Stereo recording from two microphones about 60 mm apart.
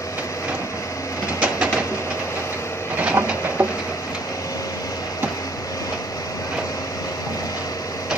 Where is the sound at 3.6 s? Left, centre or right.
Right.